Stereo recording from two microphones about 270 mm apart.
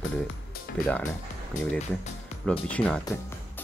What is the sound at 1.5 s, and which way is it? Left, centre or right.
Speech, left.